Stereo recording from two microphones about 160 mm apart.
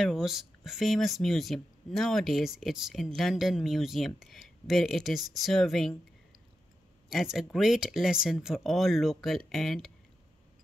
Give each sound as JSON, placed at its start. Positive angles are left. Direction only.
{"t": 0.0, "sound": "speech", "side_deg": 0}
{"t": 7.1, "sound": "speech", "side_deg": -5}